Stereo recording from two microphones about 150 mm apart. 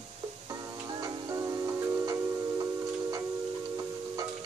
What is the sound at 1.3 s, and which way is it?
Music, 25° right (ahead or behind).